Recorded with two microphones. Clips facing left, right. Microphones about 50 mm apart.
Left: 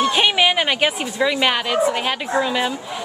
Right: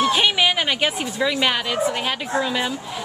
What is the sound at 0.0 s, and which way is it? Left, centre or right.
A woman's voice, centre.